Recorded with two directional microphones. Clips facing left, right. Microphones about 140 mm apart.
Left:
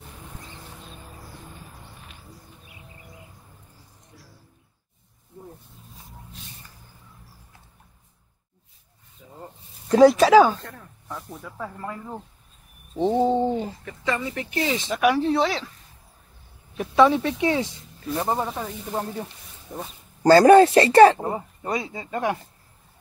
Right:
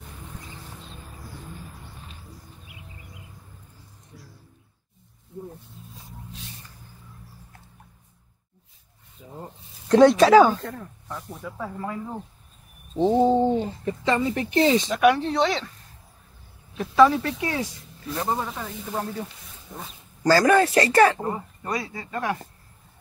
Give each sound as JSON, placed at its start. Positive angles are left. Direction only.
{"t": 9.8, "sound": "speech", "side_deg": 5}
{"t": 13.8, "sound": "speech", "side_deg": -25}
{"t": 14.9, "sound": "speech", "side_deg": 0}
{"t": 16.9, "sound": "speech", "side_deg": 20}